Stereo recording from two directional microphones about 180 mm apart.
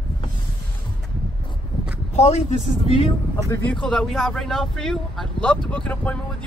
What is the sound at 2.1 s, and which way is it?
Speech, 35° left (ahead or behind).